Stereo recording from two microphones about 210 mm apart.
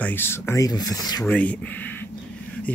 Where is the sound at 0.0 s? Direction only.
10° left (ahead or behind).